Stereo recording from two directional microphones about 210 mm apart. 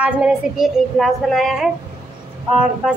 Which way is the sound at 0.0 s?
5° right (ahead or behind).